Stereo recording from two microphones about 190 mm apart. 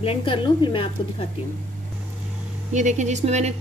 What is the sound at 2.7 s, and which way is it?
Speech, 40° right (ahead or behind).